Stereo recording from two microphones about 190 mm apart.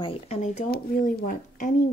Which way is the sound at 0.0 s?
30° left (ahead or behind).